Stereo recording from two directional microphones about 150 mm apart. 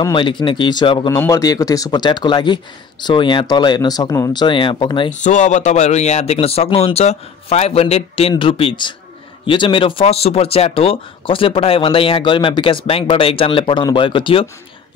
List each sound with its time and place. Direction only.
0.0 s speech: 30° left (ahead or behind)
5.2 s speech: 55° left (ahead or behind); by 14.5 s 35° left (ahead or behind)